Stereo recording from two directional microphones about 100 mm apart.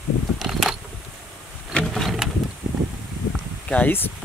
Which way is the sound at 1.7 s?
5° left (ahead or behind).